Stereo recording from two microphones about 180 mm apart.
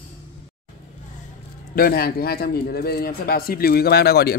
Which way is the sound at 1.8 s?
55° left (ahead or behind).